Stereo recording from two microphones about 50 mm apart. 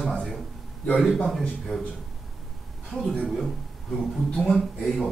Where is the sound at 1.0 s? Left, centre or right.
Centre.